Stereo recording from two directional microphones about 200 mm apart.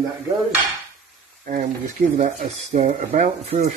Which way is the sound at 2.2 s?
40° right (ahead or behind).